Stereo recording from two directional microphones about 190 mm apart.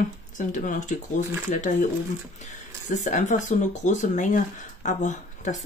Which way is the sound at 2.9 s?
40° left (ahead or behind).